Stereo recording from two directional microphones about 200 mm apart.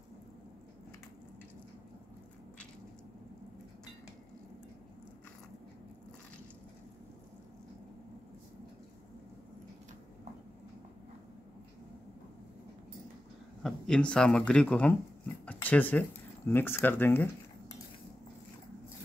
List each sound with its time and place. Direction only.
13.6 s speech: centre (ahead or behind)